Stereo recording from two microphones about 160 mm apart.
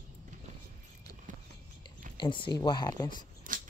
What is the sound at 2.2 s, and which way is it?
Speech, 30° left (ahead or behind).